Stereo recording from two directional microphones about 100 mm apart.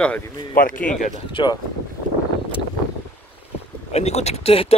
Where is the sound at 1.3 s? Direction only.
50° left (ahead or behind).